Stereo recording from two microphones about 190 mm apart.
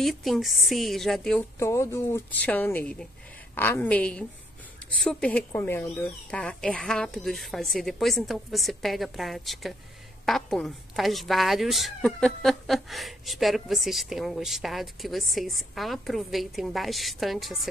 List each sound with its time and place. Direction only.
0.0 s a woman's voice: centre (ahead or behind)
1.6 s a woman's voice: 15° left (ahead or behind)